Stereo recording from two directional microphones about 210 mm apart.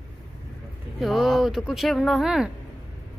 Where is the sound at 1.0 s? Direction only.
Centre (ahead or behind).